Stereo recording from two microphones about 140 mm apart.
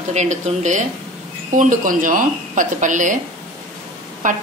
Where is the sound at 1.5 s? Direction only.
70° right (ahead or behind).